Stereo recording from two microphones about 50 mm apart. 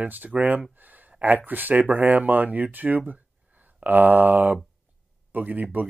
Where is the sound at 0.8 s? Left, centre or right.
Right.